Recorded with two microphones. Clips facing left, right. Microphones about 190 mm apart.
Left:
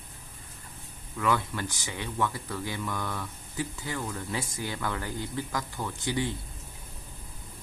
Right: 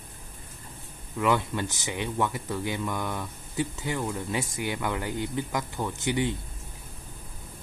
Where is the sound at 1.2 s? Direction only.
20° right (ahead or behind).